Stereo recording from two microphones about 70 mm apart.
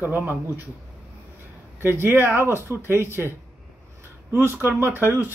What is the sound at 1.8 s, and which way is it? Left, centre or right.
Speech, right.